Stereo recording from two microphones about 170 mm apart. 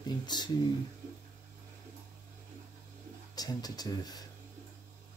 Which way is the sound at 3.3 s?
20° left (ahead or behind).